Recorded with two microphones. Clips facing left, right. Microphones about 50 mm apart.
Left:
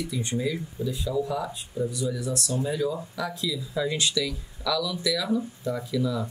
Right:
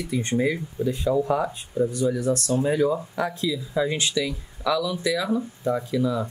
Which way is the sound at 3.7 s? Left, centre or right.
Right.